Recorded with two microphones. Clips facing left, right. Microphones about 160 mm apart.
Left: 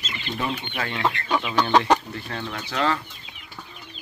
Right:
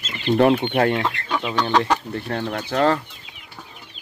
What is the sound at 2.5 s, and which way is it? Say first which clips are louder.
Speech: right 5 dB; 45° right (ahead or behind).